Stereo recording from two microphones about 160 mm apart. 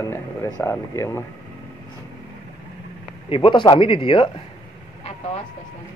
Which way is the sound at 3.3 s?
30° left (ahead or behind).